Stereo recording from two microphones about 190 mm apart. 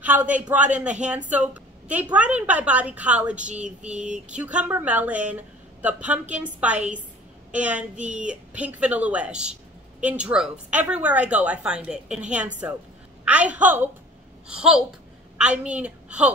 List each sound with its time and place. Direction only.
0.0 s a woman's voice: 10° right (ahead or behind)
3.3 s speech: 40° right (ahead or behind)
3.6 s a sound: 5° right (ahead or behind)
4.3 s a woman's voice: 5° right (ahead or behind)
15.3 s a woman's voice: 5° right (ahead or behind)